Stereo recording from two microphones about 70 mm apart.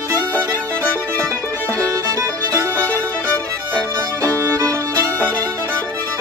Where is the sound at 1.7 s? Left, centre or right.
Right.